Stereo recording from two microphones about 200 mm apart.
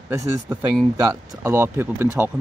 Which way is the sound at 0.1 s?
15° right (ahead or behind).